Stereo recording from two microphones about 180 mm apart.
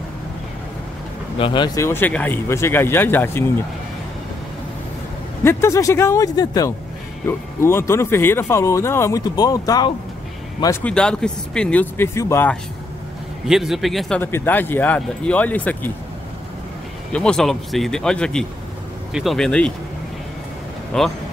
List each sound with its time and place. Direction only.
1.4 s speech: 25° left (ahead or behind)
1.9 s speech: 10° left (ahead or behind)
5.4 s speech: 15° left (ahead or behind)
13.5 s speech: centre (ahead or behind)
17.1 s speech: 5° left (ahead or behind)
20.9 s speech: 5° left (ahead or behind)